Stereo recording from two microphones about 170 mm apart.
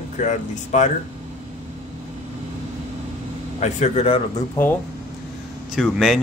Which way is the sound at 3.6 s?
40° left (ahead or behind).